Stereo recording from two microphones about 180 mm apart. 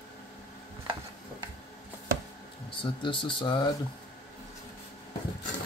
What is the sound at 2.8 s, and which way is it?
Speech, 25° left (ahead or behind).